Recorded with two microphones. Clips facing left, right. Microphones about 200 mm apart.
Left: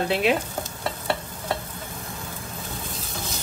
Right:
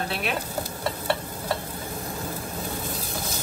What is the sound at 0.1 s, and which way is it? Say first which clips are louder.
Stir: left 8 dB; 20° left (ahead or behind).